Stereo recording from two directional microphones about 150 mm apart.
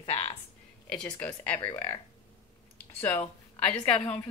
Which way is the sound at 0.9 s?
5° left (ahead or behind).